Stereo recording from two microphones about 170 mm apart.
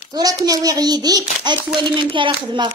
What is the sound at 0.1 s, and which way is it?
A child's voice, 20° right (ahead or behind).